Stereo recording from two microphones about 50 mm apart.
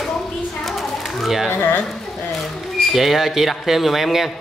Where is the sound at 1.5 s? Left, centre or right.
Left.